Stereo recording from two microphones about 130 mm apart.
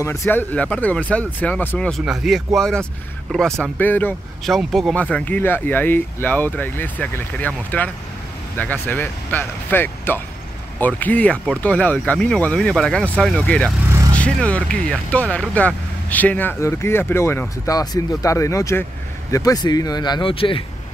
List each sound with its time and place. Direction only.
0.0 s speech: 20° left (ahead or behind)
1.9 s speech: centre (ahead or behind)
4.5 s speech: centre (ahead or behind)
5.1 s speech: 10° left (ahead or behind); by 20.6 s 40° left (ahead or behind)